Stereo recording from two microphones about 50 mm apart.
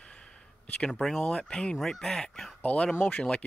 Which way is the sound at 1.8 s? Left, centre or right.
Centre.